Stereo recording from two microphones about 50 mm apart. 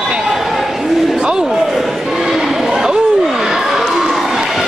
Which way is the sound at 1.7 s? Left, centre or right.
Centre.